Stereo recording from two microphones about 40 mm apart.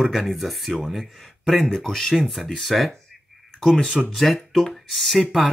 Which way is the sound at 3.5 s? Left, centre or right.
Centre.